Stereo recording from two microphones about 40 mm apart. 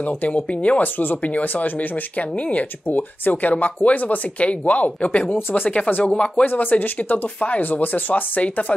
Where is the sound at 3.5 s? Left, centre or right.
Left.